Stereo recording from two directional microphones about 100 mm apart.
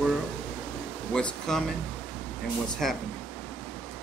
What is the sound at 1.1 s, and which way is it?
Speech, 10° left (ahead or behind).